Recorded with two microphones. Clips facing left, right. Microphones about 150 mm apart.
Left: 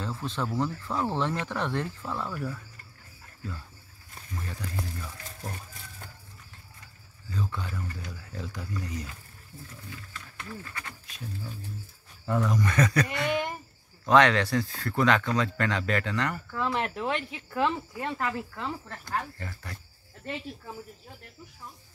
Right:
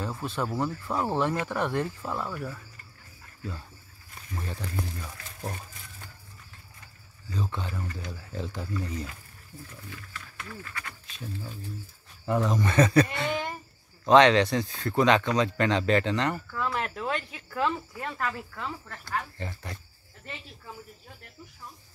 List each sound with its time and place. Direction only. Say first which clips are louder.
0.0 s speech: right 1 dB; 10° right (ahead or behind)
4.4 s speech: right 2 dB; 30° right (ahead or behind)
7.2 s speech: right 1 dB; 20° right (ahead or behind)
9.8 s speech: even; 20° left (ahead or behind)
12.3 s speech: right 1 dB; 25° right (ahead or behind)
16.5 s speech: left 1 dB; 25° left (ahead or behind)
19.3 s speech: right 3 dB; 20° right (ahead or behind)